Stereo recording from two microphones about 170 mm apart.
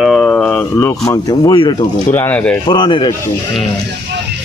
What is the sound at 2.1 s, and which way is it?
Speech, 10° left (ahead or behind).